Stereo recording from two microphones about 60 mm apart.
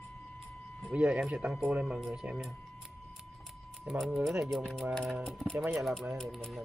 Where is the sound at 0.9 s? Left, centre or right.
Right.